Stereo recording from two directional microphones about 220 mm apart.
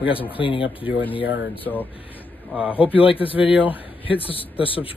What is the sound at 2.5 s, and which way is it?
Speech, 5° right (ahead or behind).